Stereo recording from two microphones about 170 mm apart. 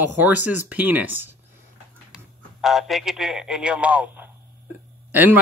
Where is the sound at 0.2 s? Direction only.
10° right (ahead or behind).